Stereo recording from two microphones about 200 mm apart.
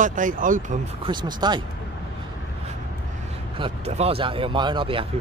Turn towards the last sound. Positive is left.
turn(degrees=-25)  # may be behind; listen again after turning